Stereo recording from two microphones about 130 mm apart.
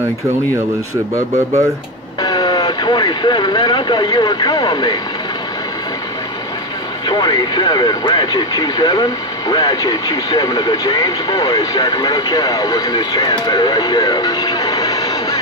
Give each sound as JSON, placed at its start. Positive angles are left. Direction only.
{"t": 1.1, "sound": "speech", "side_deg": -25}
{"t": 2.2, "sound": "speech", "side_deg": 30}
{"t": 7.1, "sound": "speech", "side_deg": 35}